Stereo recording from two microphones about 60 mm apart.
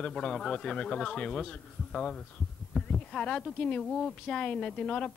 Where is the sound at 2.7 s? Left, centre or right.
Centre.